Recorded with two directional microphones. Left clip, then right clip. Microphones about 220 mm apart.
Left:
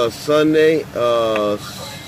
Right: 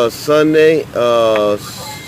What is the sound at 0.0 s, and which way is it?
Speech, 25° right (ahead or behind).